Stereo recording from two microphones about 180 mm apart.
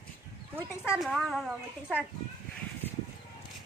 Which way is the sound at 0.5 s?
5° right (ahead or behind).